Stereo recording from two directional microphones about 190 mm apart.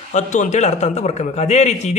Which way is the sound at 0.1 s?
40° left (ahead or behind).